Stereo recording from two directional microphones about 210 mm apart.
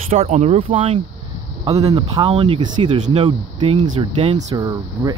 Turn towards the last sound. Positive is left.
turn(degrees=-20)  # may be behind; listen again after turning